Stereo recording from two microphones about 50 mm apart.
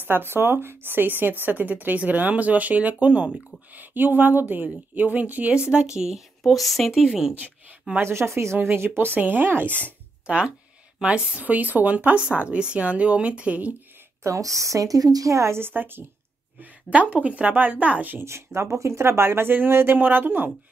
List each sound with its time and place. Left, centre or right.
0.0 s speech: right
3.7 s speech: right
5.9 s a woman's voice: centre
8.0 s speech: right
8.5 s speech: right
10.2 s speech: right
11.4 s speech: right
14.2 s a woman's voice: right
15.2 s a woman's voice: right
15.6 s speech: right
16.9 s speech: right
18.2 s speech: right